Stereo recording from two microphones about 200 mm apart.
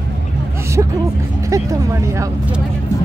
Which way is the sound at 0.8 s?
15° right (ahead or behind).